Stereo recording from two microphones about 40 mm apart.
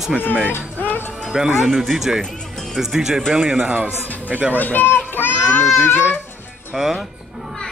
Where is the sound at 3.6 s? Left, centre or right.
Right.